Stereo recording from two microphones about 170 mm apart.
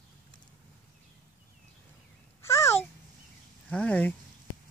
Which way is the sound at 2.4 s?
15° left (ahead or behind).